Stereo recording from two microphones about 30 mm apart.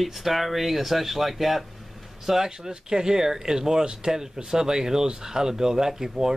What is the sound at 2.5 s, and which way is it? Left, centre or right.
Speech, right.